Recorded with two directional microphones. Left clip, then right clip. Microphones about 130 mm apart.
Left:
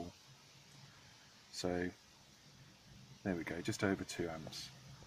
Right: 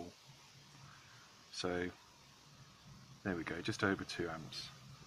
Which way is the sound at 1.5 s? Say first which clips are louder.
Even; 20° left (ahead or behind).